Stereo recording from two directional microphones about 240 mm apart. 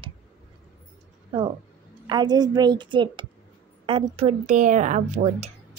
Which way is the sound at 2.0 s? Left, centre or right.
Centre.